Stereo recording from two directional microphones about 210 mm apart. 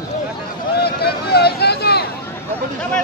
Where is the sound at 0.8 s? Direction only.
50° left (ahead or behind).